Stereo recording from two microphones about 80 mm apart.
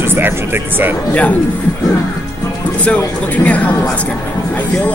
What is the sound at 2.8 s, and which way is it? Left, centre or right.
Speech, centre.